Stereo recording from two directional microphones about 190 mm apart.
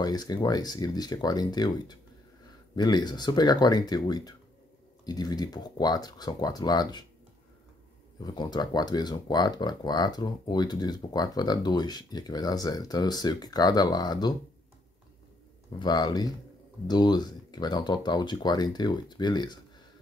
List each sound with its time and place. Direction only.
0.0 s speech: 20° left (ahead or behind)
8.2 s speech: 20° left (ahead or behind)
15.8 s speech: 20° left (ahead or behind)